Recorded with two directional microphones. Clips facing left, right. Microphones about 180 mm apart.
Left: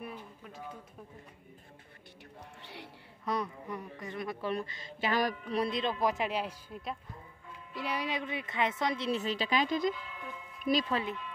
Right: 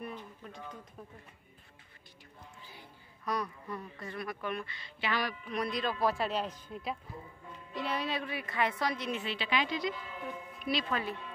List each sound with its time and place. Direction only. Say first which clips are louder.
0.0 s a sound: right 1 dB; 5° left (ahead or behind)
2.6 s a sound: left 8 dB; 75° left (ahead or behind)
3.3 s a woman's voice: left 1 dB; 20° left (ahead or behind); by 5.6 s 45° left (ahead or behind)
5.6 s a man's voice: left 1 dB; 25° left (ahead or behind)
9.2 s speech: left 3 dB; 40° left (ahead or behind)
10.9 s a woman's voice: left 2 dB; 25° left (ahead or behind)